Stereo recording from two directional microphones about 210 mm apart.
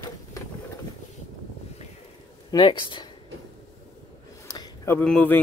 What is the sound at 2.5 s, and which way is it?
Speech, 20° left (ahead or behind).